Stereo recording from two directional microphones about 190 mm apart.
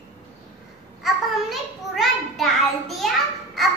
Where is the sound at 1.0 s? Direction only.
Centre (ahead or behind).